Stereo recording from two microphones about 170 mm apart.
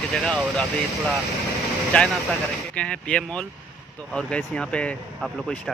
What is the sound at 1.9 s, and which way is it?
Speech, 5° left (ahead or behind).